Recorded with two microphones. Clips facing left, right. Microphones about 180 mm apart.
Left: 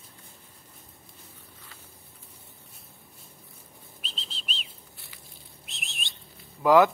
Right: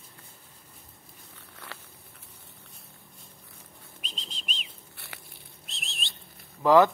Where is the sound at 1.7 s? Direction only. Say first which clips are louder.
Right 10 dB; 75° right (ahead or behind).